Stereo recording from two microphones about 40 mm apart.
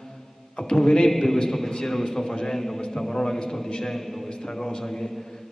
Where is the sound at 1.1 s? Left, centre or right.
Centre.